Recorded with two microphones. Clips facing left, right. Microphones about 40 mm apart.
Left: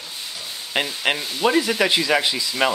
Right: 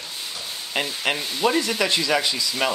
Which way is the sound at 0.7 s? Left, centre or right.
Centre.